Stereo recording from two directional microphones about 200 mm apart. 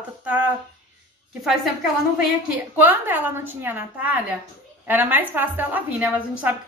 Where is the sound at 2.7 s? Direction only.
10° right (ahead or behind).